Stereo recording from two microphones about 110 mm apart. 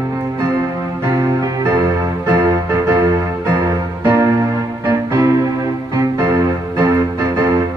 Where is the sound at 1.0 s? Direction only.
30° right (ahead or behind).